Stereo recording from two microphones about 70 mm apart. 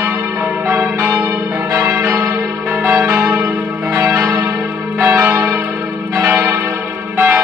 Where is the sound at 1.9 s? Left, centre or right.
Right.